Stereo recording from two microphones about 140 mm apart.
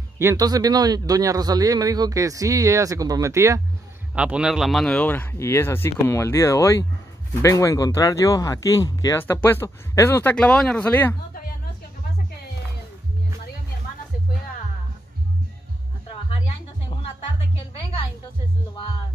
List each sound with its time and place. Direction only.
0.2 s speech: 25° right (ahead or behind)
4.1 s speech: 5° right (ahead or behind); by 11.1 s 15° left (ahead or behind)